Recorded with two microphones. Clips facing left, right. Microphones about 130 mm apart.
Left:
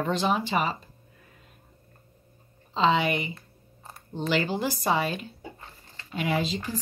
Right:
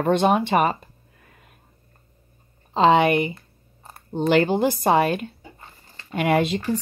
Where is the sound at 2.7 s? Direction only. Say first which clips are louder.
Right 7 dB; 50° right (ahead or behind).